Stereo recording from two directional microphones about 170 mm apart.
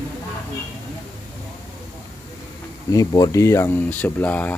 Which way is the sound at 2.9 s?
20° left (ahead or behind).